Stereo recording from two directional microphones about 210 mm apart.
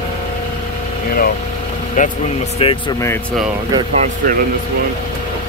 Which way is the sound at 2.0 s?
40° left (ahead or behind).